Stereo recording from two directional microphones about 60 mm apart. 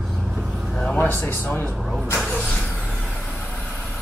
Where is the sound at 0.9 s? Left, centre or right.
Left.